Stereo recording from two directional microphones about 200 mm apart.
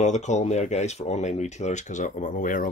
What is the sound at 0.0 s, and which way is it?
Speech, 35° left (ahead or behind).